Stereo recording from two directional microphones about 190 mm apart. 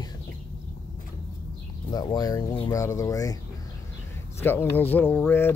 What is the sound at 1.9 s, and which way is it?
Speech, 20° left (ahead or behind).